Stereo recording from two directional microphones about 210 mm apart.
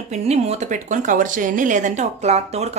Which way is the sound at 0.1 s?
30° right (ahead or behind).